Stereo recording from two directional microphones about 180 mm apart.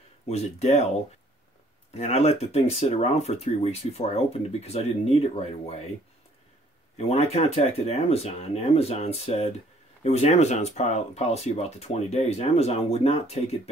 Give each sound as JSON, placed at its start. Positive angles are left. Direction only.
{"t": 0.3, "sound": "speech", "side_deg": 35}
{"t": 2.0, "sound": "speech", "side_deg": 35}
{"t": 7.0, "sound": "speech", "side_deg": 35}